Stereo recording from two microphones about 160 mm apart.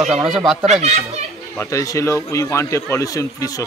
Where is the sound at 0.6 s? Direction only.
40° right (ahead or behind).